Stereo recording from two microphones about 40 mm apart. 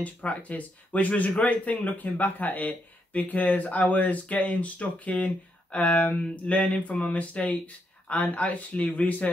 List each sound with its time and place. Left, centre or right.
0.0 s speech: left